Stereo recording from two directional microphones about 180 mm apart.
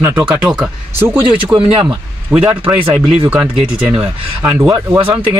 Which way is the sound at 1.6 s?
30° right (ahead or behind).